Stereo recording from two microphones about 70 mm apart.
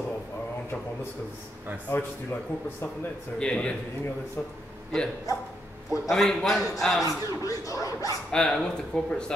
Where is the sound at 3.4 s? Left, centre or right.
Centre.